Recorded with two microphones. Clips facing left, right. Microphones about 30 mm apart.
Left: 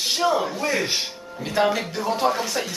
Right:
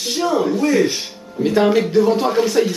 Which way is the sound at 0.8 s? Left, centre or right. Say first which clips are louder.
Right 4 dB; centre.